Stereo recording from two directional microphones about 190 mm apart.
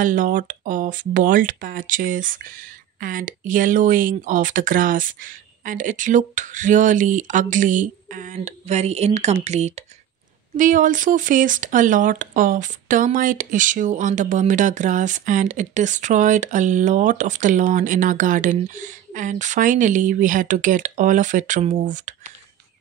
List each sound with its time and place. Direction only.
0.0 s speech: 45° right (ahead or behind)